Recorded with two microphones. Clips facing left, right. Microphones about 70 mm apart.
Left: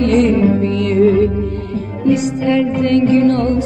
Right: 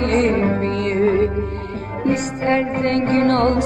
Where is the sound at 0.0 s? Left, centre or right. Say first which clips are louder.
Left 5 dB; right.